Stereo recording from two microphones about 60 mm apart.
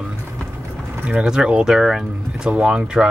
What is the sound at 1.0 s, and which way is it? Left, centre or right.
Speech, centre.